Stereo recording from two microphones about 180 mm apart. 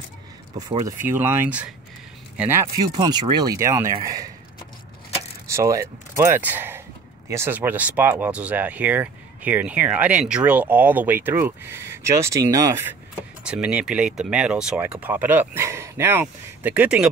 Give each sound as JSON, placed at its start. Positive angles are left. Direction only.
{"t": 0.6, "sound": "speech", "side_deg": -20}
{"t": 5.5, "sound": "speech", "side_deg": -15}
{"t": 13.4, "sound": "speech", "side_deg": -5}